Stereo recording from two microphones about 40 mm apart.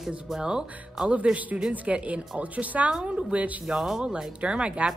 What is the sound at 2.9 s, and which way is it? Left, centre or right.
Speech, centre.